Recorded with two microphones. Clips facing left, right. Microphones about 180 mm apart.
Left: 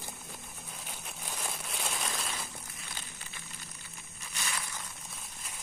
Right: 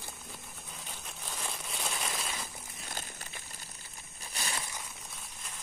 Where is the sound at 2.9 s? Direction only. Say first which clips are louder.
Right 6 dB; 45° right (ahead or behind).